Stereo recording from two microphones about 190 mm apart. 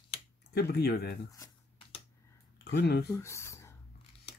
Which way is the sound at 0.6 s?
55° left (ahead or behind).